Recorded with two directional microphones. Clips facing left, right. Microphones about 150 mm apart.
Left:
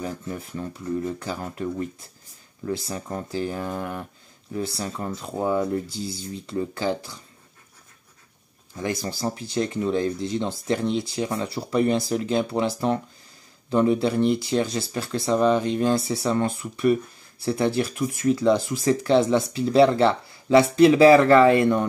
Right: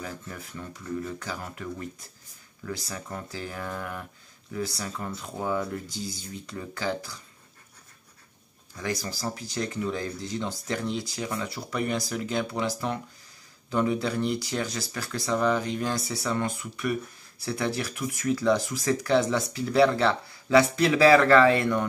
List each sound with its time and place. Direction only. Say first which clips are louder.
0.0 s speech: left 7 dB; 30° left (ahead or behind)
8.7 s speech: left 4 dB; 25° left (ahead or behind)